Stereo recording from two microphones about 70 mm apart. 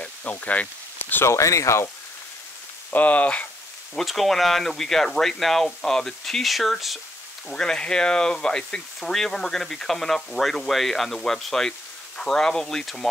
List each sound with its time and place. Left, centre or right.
0.0 s speech: left
1.2 s speech: left
2.9 s speech: left
3.9 s speech: centre